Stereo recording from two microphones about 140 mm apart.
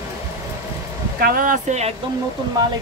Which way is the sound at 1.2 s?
85° right.